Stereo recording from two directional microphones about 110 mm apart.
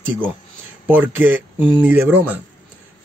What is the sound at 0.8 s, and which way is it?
Speech, 15° right (ahead or behind).